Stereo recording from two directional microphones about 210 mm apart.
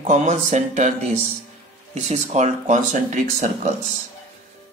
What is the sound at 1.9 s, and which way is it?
Speech, 30° right (ahead or behind).